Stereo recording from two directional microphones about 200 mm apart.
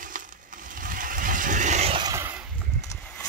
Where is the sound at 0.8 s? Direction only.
40° right (ahead or behind).